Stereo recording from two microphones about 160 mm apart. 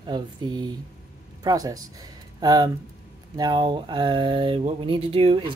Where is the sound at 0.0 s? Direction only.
25° right (ahead or behind).